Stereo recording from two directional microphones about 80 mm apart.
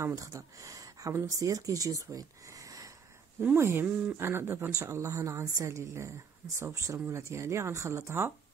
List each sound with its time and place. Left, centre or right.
0.0 s speech: right
3.5 s a woman's voice: right
4.7 s a woman's voice: right